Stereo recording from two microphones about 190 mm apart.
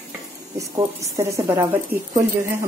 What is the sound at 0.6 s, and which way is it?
A woman's voice, 15° right (ahead or behind).